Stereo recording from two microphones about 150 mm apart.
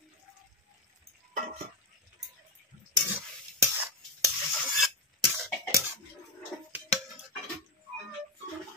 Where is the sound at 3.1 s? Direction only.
15° right (ahead or behind).